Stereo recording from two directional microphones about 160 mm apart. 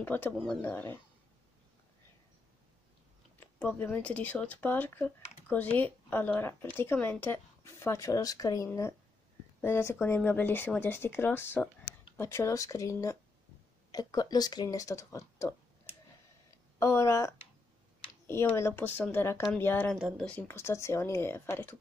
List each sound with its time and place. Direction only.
0.0 s a woman's voice: 15° left (ahead or behind)
3.3 s a woman's voice: 10° left (ahead or behind)
16.4 s a sound: 15° left (ahead or behind)
18.2 s a woman's voice: 15° left (ahead or behind)
19.9 s speech: centre (ahead or behind)
20.2 s a woman's voice: 10° left (ahead or behind)